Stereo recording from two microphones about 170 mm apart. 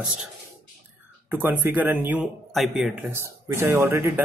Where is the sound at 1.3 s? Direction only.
10° right (ahead or behind).